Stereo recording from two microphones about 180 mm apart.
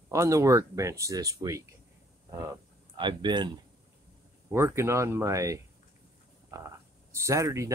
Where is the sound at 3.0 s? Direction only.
25° right (ahead or behind).